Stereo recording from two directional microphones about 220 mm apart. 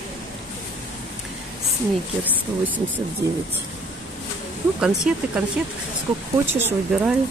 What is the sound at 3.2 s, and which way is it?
Speech, 15° right (ahead or behind).